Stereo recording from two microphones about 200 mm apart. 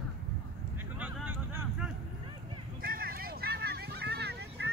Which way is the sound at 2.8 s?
50° right (ahead or behind).